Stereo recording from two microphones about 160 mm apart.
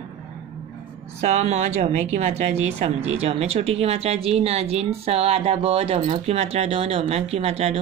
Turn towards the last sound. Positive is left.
turn(degrees=-40)  # may be behind; listen again after turning